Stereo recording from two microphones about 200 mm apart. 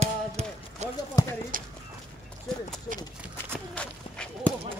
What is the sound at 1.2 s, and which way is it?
Speech, 15° left (ahead or behind).